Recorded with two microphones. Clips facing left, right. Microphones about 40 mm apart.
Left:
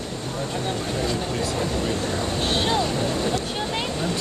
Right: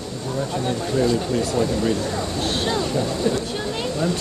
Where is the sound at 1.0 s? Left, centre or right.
Left.